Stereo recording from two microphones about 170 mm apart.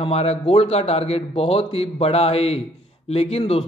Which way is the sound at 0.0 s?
35° left (ahead or behind).